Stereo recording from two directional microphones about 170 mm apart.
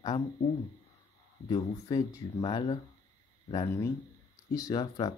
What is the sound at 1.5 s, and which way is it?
Speech, 20° left (ahead or behind).